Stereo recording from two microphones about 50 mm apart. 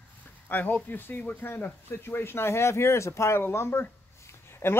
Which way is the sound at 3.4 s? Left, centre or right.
Left.